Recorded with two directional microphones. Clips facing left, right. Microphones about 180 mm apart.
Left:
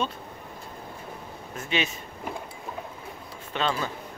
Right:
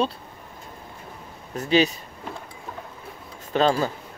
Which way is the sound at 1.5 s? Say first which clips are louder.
Right 9 dB; 35° right (ahead or behind).